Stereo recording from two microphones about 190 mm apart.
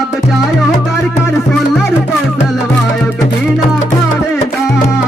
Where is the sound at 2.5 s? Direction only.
10° left (ahead or behind).